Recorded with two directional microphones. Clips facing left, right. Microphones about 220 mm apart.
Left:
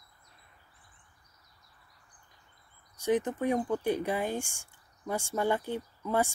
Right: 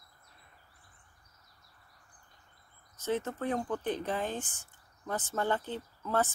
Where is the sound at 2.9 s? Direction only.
15° left (ahead or behind).